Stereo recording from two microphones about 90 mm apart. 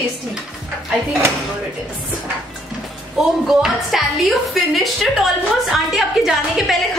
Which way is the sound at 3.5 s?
5° right (ahead or behind).